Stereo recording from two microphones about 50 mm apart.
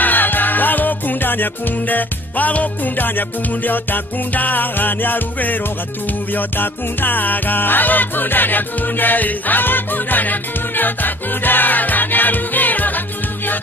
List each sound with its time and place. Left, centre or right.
0.0 s music: left